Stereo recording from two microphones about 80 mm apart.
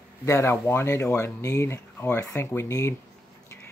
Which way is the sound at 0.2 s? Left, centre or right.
Left.